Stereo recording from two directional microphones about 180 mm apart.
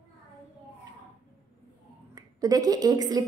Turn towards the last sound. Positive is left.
turn(degrees=-20)  # may be behind; listen again after turning